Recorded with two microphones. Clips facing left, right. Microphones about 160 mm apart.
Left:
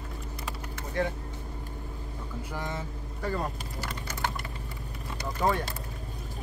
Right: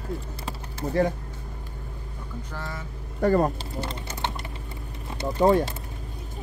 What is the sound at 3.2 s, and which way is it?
Speech, 50° right (ahead or behind).